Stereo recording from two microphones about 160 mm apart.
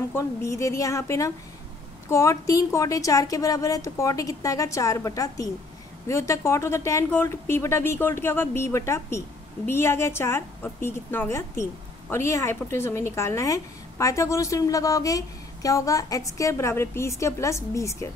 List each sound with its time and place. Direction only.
0.1 s speech: 15° left (ahead or behind)